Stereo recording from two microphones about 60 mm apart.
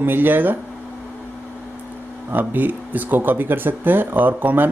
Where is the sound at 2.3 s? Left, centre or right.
Right.